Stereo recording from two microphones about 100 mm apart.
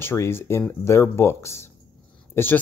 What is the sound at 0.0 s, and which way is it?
Speech, 25° left (ahead or behind).